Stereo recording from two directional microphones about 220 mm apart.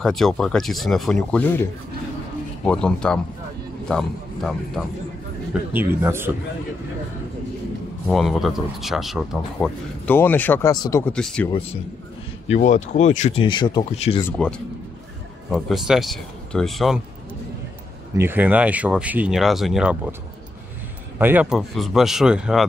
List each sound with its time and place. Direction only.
0.0 s speech: centre (ahead or behind)
5.5 s a man's voice: 10° right (ahead or behind)
8.1 s speech: centre (ahead or behind)
11.5 s speech: 25° left (ahead or behind)
13.5 s speech: 20° left (ahead or behind)
14.2 s speech: 5° left (ahead or behind)
18.1 s speech: 10° right (ahead or behind)
21.2 s speech: 10° right (ahead or behind)